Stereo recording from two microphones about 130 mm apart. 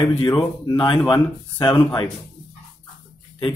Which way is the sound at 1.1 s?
5° left (ahead or behind).